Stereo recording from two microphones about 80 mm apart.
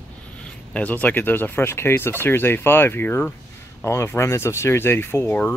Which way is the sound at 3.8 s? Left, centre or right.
Left.